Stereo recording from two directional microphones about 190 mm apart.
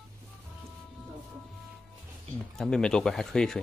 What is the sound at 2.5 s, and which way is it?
Speech, 5° left (ahead or behind).